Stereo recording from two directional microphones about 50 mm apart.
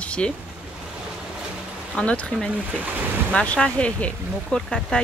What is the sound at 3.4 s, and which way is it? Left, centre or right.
Speech, left.